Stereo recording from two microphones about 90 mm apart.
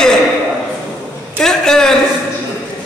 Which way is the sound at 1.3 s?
5° left (ahead or behind).